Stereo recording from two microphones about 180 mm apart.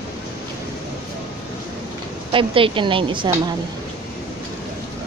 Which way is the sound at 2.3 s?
30° right (ahead or behind).